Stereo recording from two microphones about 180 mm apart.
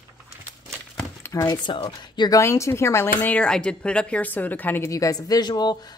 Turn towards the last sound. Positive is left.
turn(degrees=25)  # may be behind; listen again after turning